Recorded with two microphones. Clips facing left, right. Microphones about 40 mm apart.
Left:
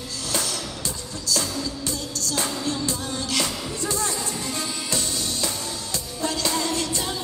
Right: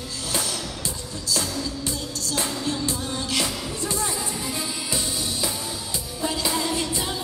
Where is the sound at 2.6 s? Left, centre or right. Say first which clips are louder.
Even; centre.